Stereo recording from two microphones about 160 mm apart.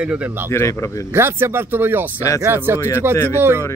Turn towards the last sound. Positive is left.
turn(degrees=-15)  # may be behind; listen again after turning